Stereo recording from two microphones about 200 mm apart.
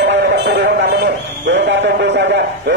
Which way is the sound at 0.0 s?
60° right (ahead or behind).